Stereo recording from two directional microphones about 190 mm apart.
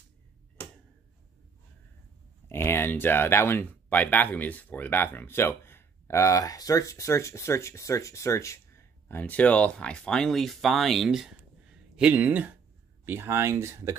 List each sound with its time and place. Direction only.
2.5 s speech: 15° left (ahead or behind); by 13.9 s 15° right (ahead or behind)